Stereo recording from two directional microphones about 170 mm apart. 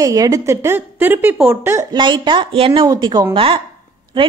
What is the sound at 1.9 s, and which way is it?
A woman's voice, 30° right (ahead or behind).